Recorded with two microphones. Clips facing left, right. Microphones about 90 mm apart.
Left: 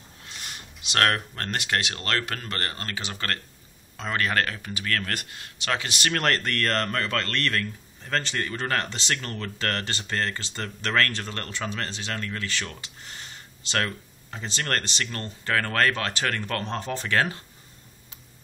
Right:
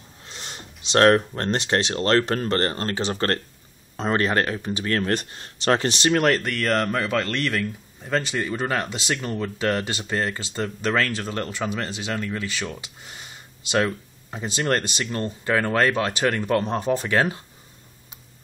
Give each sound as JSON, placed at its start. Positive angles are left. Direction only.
{"t": 0.2, "sound": "speech", "side_deg": -30}
{"t": 6.1, "sound": "a man's voice", "side_deg": -10}